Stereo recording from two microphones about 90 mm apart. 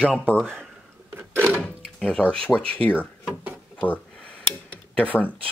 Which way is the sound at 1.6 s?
10° left (ahead or behind).